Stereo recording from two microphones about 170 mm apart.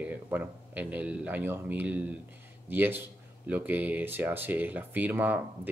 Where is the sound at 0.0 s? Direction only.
10° right (ahead or behind).